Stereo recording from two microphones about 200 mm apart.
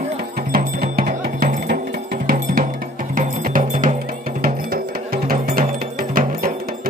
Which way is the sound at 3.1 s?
40° right (ahead or behind).